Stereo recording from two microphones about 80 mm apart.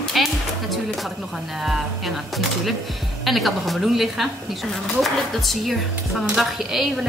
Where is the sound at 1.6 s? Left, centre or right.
Centre.